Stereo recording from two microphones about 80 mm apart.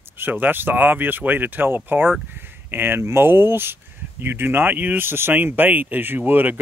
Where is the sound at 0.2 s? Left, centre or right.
Right.